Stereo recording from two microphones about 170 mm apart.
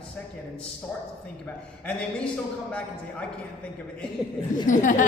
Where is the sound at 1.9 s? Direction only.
5° left (ahead or behind).